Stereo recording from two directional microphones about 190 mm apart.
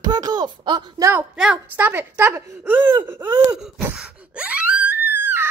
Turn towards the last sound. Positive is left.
turn(degrees=-10)  # may be behind; listen again after turning